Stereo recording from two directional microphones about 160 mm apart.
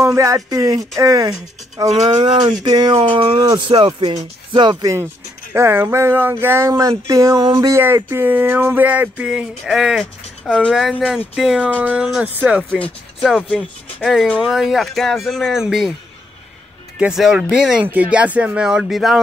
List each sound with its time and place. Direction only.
0.0 s speech: 20° right (ahead or behind)
5.5 s a sound: 15° right (ahead or behind)
13.4 s speech: 5° left (ahead or behind)
17.0 s speech: 5° right (ahead or behind)